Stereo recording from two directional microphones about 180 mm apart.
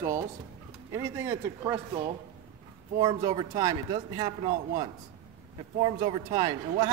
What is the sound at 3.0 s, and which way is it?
A man's voice, 20° right (ahead or behind).